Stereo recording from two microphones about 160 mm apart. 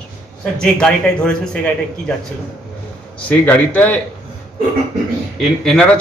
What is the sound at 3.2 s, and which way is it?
Speech, 10° left (ahead or behind).